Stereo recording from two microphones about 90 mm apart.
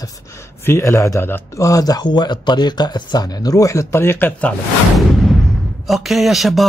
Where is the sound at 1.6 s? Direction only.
40° left (ahead or behind).